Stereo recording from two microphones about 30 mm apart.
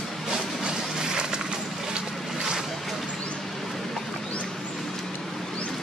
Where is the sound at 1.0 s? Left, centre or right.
Right.